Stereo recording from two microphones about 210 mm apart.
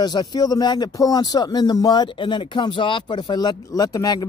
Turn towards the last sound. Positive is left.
turn(degrees=15)  # may be behind; listen again after turning